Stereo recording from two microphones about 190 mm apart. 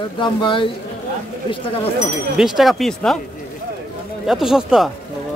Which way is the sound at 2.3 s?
Centre (ahead or behind).